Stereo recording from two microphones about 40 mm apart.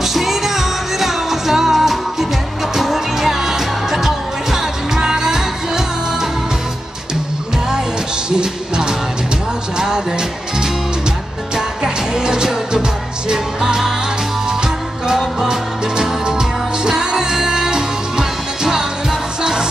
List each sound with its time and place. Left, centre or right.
0.0 s music: centre
8.4 s music: right
11.5 s music: centre
16.0 s music: centre